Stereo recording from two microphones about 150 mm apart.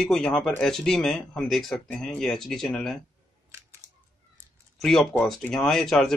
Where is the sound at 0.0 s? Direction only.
5° left (ahead or behind).